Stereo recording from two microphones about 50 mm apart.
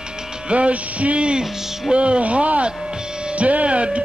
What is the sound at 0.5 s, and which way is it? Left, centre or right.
Speech, right.